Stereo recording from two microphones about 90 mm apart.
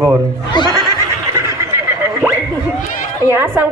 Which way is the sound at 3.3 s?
20° right (ahead or behind).